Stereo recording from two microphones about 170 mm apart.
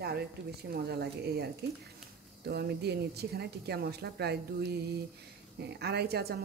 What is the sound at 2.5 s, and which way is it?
Speech, 70° right (ahead or behind).